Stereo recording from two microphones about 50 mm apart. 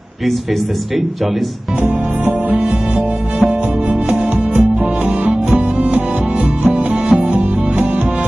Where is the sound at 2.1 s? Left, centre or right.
Right.